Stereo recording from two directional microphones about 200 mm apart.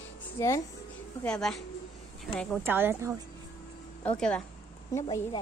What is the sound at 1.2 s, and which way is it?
Speech, 5° left (ahead or behind).